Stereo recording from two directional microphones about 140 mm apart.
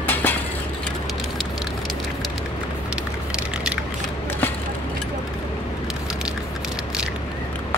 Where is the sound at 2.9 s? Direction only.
5° right (ahead or behind).